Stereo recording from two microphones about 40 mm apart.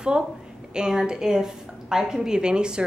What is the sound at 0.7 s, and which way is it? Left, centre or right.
A woman's voice, centre.